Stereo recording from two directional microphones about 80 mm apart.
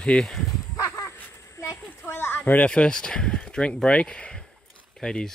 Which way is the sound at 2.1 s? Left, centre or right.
Left.